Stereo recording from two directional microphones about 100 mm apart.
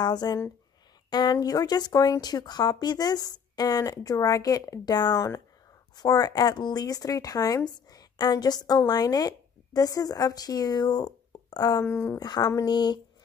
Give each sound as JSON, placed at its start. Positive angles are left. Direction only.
{"t": 0.0, "sound": "speech", "side_deg": 45}
{"t": 11.8, "sound": "speech", "side_deg": 25}
{"t": 12.2, "sound": "speech", "side_deg": 40}